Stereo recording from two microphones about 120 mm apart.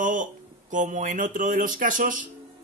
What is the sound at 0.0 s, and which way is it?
Speech, 90° right.